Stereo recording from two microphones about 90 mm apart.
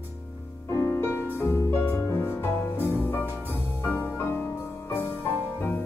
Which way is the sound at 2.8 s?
30° right (ahead or behind).